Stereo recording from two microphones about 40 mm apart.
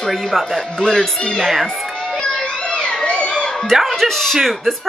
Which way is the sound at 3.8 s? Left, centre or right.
Centre.